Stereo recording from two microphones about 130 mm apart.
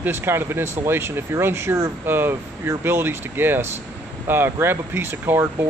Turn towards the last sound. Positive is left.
turn(degrees=-15)  # may be behind; listen again after turning